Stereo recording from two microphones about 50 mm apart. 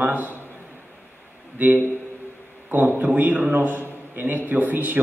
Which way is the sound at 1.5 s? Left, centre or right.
Right.